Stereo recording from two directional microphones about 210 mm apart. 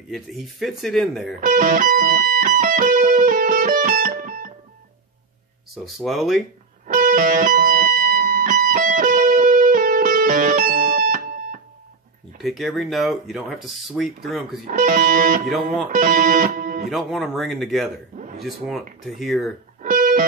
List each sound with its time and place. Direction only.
0.1 s speech: centre (ahead or behind)
1.4 s music: 40° right (ahead or behind)
5.9 s speech: centre (ahead or behind)
6.9 s music: 40° right (ahead or behind)
12.4 s speech: centre (ahead or behind)
14.7 s speech: 40° right (ahead or behind)
16.9 s speech: centre (ahead or behind)
18.1 s a sound: 35° right (ahead or behind)
19.0 s speech: centre (ahead or behind)
19.8 s music: 40° right (ahead or behind)